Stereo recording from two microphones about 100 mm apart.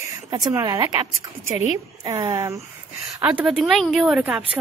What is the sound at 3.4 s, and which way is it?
A woman's voice, centre (ahead or behind).